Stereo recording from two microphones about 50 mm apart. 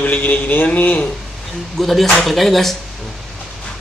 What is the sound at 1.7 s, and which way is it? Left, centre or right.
Speech, centre.